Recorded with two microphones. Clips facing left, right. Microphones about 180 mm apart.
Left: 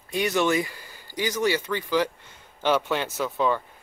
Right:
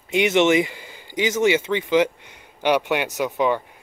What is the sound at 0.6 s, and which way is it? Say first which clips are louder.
Speech: right 6 dB; 20° right (ahead or behind).